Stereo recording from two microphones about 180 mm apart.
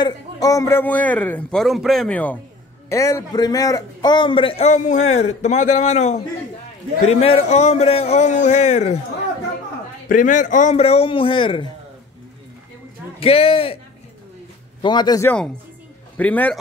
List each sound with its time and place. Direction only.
0.0 s a man's voice: 20° left (ahead or behind); by 9.0 s 40° left (ahead or behind)
10.0 s a man's voice: 45° left (ahead or behind); by 11.7 s 30° left (ahead or behind)
13.2 s a man's voice: 30° left (ahead or behind)
14.8 s a man's voice: 25° left (ahead or behind)
15.2 s a man's voice: 5° left (ahead or behind)